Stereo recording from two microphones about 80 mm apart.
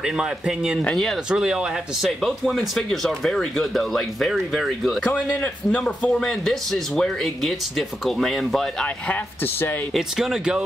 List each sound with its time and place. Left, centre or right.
0.0 s speech: centre
2.0 s speech: centre
5.0 s a man's voice: centre
8.8 s speech: left
9.9 s speech: centre